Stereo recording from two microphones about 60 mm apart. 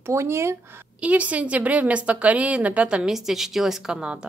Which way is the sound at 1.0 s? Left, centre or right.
Right.